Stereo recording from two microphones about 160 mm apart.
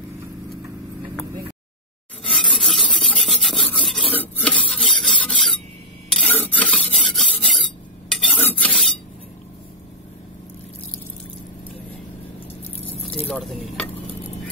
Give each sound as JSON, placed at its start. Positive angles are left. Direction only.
{"t": 2.3, "sound": "rub", "side_deg": 0}
{"t": 4.1, "sound": "filing", "side_deg": 10}
{"t": 13.1, "sound": "a sound", "side_deg": 0}